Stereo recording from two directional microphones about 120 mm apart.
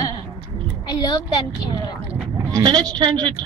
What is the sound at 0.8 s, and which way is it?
Speech, 35° left (ahead or behind).